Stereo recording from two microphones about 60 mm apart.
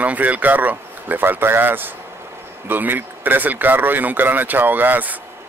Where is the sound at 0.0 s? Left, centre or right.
Right.